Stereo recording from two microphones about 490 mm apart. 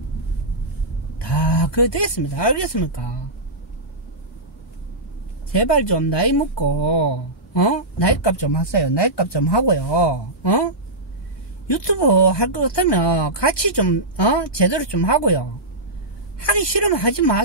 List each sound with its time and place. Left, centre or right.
1.2 s speech: left
5.5 s speech: left
16.4 s speech: left